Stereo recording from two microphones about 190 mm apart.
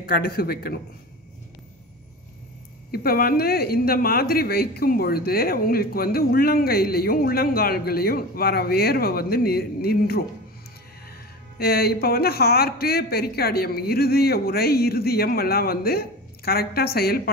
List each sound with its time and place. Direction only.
0.0 s speech: 50° left (ahead or behind)
2.9 s speech: 50° left (ahead or behind)
11.5 s speech: 55° left (ahead or behind)